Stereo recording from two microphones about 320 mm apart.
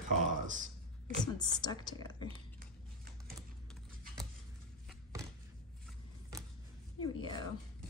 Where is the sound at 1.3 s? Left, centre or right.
Centre.